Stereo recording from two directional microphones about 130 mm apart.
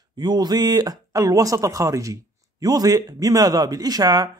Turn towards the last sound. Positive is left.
turn(degrees=-30)  # may be behind; listen again after turning